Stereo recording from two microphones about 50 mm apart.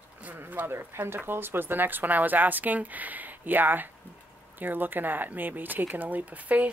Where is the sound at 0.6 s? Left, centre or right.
Right.